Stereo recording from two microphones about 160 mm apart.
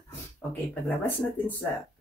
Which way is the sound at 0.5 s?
10° left (ahead or behind).